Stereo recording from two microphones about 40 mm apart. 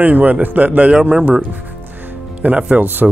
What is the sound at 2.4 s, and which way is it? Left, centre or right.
Speech, right.